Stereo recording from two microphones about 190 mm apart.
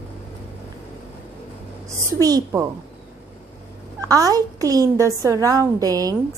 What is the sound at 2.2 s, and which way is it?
Speech, 20° right (ahead or behind).